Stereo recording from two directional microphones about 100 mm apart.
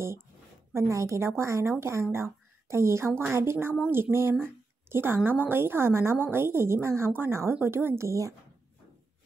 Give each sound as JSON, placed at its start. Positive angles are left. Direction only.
{"t": 0.7, "sound": "a woman's voice", "side_deg": -30}